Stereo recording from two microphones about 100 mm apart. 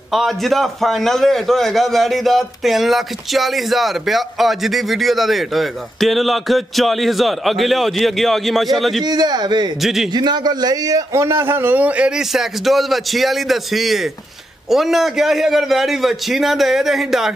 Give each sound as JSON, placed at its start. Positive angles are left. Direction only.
{"t": 0.1, "sound": "a man's voice", "side_deg": 0}
{"t": 9.0, "sound": "speech", "side_deg": -45}
{"t": 9.8, "sound": "a man's voice", "side_deg": 0}
{"t": 10.1, "sound": "a man's voice", "side_deg": -45}